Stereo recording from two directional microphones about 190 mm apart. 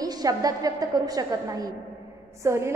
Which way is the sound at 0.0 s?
20° right (ahead or behind).